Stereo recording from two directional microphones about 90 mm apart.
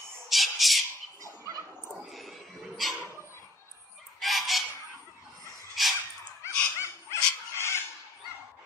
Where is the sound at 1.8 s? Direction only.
15° right (ahead or behind).